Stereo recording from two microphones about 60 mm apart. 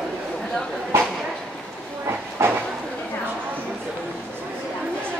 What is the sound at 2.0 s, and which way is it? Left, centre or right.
Train, right.